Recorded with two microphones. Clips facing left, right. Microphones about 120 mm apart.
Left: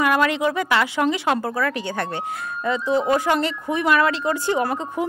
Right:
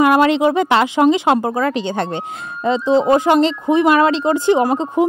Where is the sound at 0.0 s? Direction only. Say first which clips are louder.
Right 7 dB; 25° right (ahead or behind).